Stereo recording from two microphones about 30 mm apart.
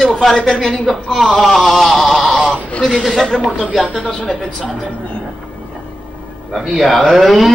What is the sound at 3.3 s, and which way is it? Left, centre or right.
Speech, left.